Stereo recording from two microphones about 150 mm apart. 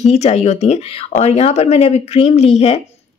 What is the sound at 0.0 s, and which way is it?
Speech, 45° left (ahead or behind).